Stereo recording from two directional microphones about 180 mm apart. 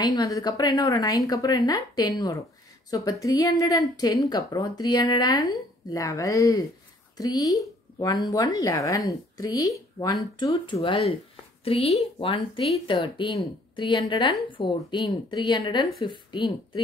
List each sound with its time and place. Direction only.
0.0 s a woman's voice: 20° left (ahead or behind)